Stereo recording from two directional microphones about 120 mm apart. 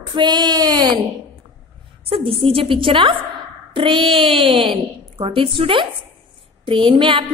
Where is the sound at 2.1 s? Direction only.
50° right (ahead or behind).